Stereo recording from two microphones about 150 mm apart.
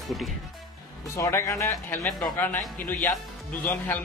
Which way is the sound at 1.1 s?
20° left (ahead or behind).